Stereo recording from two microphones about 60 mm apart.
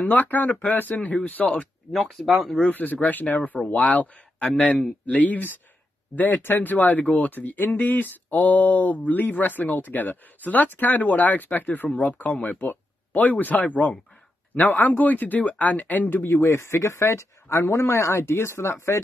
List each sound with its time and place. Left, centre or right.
0.0 s speech: left
1.5 s speech: centre
2.7 s speech: left